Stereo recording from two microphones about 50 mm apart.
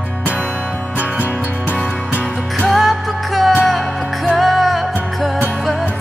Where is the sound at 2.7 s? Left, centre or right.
Centre.